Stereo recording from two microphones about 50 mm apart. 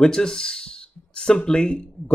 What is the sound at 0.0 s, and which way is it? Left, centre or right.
Speech, centre.